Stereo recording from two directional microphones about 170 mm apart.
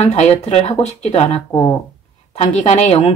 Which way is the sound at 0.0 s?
40° left (ahead or behind).